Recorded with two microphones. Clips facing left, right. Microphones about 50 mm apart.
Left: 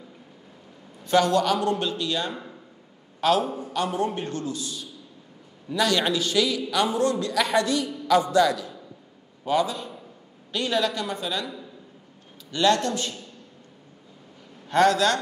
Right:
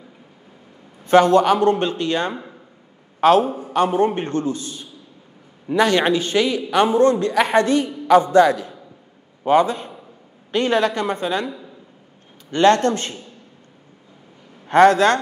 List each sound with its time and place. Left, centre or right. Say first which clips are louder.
1.0 s a woman's voice: right 7 dB; right
14.7 s a woman's voice: right 7 dB; right